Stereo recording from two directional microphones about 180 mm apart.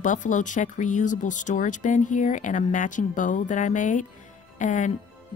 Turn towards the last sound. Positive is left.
turn(degrees=45)  # may be behind; listen again after turning